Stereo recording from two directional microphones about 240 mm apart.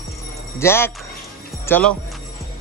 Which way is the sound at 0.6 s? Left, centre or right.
Centre.